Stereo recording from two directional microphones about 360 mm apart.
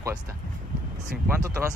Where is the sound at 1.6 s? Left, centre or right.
Centre.